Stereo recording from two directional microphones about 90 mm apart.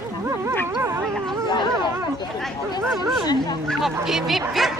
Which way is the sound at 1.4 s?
60° left (ahead or behind).